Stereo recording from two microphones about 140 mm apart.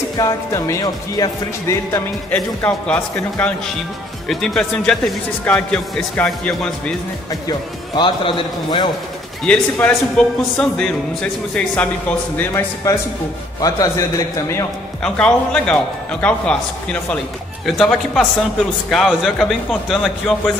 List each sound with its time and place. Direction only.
0.2 s speech: 25° left (ahead or behind)
2.3 s speech: 10° left (ahead or behind)
7.4 s a man's voice: 35° left (ahead or behind)
9.4 s speech: 10° left (ahead or behind)
15.1 s speech: 5° left (ahead or behind)